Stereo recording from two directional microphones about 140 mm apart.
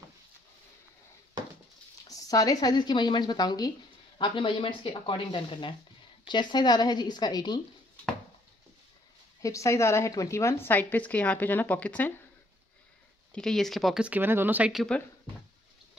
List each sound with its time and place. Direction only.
2.0 s speech: 25° left (ahead or behind)
9.4 s a woman's voice: 20° left (ahead or behind)
13.3 s speech: 5° left (ahead or behind); by 14.7 s 15° right (ahead or behind)
14.7 s speech: centre (ahead or behind)